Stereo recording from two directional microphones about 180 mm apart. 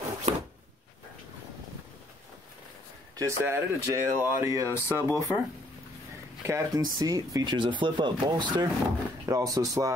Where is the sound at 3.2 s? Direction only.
15° right (ahead or behind).